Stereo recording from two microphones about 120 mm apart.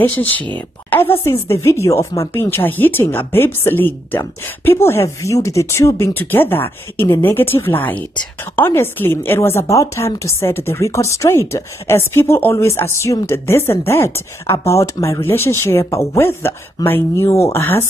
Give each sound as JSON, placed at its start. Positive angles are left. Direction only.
{"t": 0.2, "sound": "a woman's voice", "side_deg": 15}